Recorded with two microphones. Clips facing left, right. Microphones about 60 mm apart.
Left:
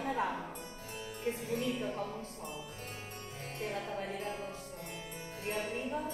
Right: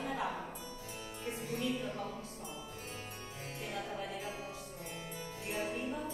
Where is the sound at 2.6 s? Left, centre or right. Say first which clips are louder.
Even; left.